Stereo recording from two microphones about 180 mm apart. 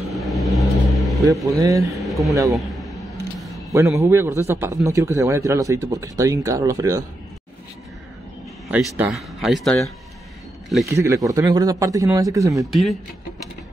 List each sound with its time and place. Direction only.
0.1 s vehicle: centre (ahead or behind)
1.2 s speech: 20° right (ahead or behind)
2.0 s a man's voice: centre (ahead or behind)
3.7 s speech: 15° right (ahead or behind)
8.6 s speech: 5° right (ahead or behind)
10.9 s speech: 15° right (ahead or behind)